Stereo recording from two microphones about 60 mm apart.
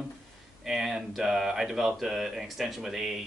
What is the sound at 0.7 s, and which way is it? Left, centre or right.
Speech, centre.